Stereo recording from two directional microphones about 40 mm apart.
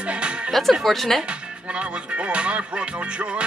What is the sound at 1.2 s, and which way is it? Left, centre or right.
Music, right.